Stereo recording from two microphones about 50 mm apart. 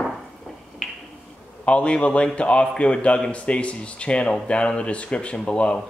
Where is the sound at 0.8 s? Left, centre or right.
Centre.